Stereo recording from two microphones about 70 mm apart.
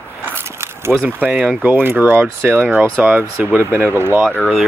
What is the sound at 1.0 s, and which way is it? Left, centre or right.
Speech, right.